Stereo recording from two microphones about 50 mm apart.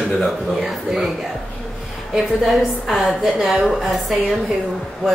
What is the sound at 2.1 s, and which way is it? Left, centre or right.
A woman's voice, centre.